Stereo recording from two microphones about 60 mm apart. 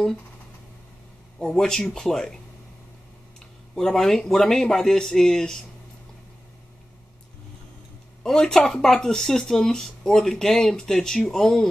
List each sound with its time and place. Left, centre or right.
1.4 s speech: centre
3.7 s speech: centre
8.2 s speech: centre